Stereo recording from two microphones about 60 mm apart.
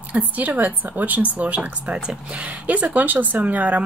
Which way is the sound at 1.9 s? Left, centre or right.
Centre.